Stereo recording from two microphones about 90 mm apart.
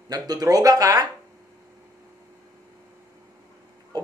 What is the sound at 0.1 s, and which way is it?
Speech, 45° right (ahead or behind).